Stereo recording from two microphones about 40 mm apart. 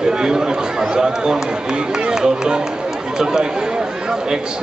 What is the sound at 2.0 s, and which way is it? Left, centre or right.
Run, centre.